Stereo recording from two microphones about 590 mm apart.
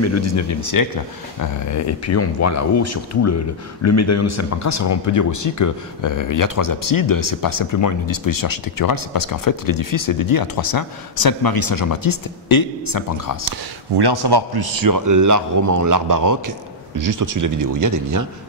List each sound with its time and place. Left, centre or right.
0.0 s speech: left
13.5 s a man's voice: right